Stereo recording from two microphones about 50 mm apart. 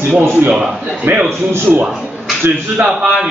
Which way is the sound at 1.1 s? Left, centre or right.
Right.